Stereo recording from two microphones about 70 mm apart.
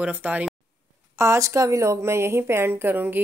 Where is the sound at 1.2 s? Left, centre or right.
Right.